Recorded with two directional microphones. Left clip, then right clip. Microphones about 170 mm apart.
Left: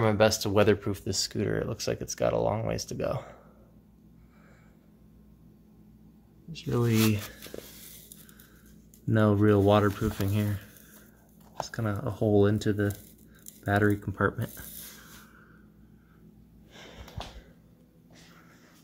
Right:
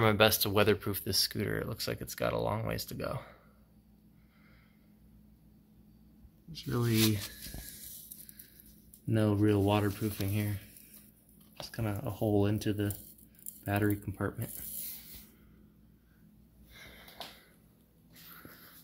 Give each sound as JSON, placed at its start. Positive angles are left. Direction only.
{"t": 0.0, "sound": "speech", "side_deg": 10}
{"t": 6.5, "sound": "speech", "side_deg": 15}
{"t": 9.1, "sound": "speech", "side_deg": 30}
{"t": 11.7, "sound": "speech", "side_deg": 30}
{"t": 16.7, "sound": "sniff", "side_deg": 30}